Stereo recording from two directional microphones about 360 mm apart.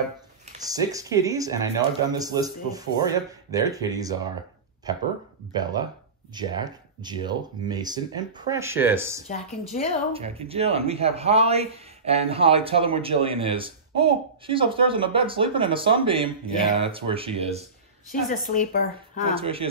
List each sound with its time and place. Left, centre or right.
0.5 s a man's voice: centre
5.5 s a man's voice: centre
9.3 s a woman's voice: centre
10.1 s a man's voice: centre
18.3 s speech: left
19.3 s a man's voice: centre